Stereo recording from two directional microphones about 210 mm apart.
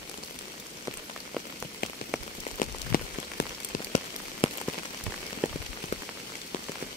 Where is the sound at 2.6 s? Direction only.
45° left (ahead or behind).